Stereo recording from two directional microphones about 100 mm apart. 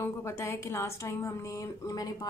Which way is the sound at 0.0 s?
25° left (ahead or behind).